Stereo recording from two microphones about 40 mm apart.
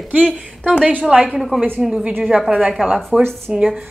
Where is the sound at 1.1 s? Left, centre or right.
Right.